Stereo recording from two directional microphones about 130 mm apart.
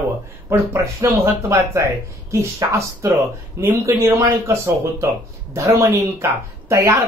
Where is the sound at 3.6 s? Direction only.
25° right (ahead or behind).